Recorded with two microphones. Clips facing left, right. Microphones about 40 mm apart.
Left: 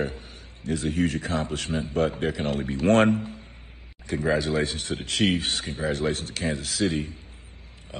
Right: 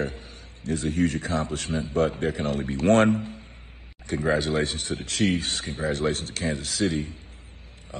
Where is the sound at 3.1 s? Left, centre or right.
Right.